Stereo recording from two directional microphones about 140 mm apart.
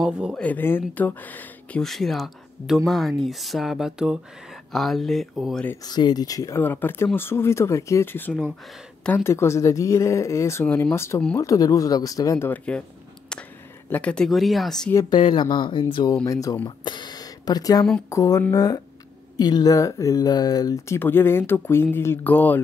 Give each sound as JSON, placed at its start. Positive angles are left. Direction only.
{"t": 0.0, "sound": "speech", "side_deg": -5}
{"t": 0.4, "sound": "speech", "side_deg": 15}
{"t": 5.9, "sound": "speech", "side_deg": 30}
{"t": 13.8, "sound": "speech", "side_deg": 10}
{"t": 15.0, "sound": "speech", "side_deg": 35}